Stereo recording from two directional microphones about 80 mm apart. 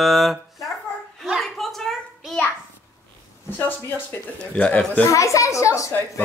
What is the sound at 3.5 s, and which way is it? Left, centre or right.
Speech, left.